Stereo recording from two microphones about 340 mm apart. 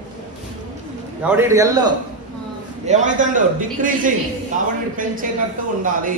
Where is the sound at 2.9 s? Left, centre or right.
Right.